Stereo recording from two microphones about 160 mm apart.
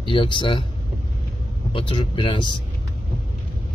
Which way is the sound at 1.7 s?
35° left (ahead or behind).